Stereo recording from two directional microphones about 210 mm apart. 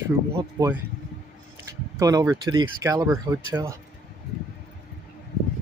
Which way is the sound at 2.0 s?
15° right (ahead or behind).